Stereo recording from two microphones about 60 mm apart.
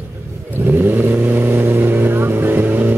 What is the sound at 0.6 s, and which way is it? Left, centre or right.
Vehicle, right.